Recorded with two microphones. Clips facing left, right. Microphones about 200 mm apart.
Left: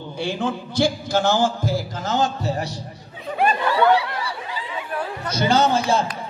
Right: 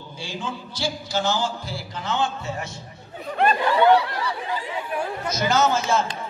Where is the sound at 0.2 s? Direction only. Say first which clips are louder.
Left 8 dB; 60° left (ahead or behind); by 2.7 s 35° left (ahead or behind).